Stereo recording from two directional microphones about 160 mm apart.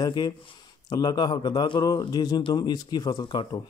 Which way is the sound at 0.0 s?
25° left (ahead or behind).